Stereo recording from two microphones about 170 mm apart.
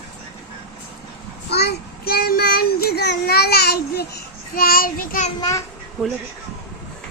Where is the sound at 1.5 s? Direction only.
70° left (ahead or behind); by 5.3 s 55° left (ahead or behind).